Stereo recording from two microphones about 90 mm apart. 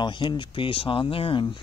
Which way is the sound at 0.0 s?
60° left (ahead or behind).